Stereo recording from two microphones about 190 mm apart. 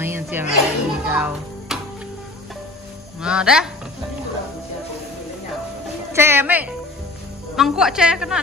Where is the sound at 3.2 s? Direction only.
5° right (ahead or behind).